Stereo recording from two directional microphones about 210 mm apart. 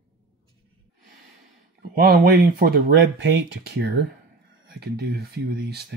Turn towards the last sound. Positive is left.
turn(degrees=-50)  # may be behind; listen again after turning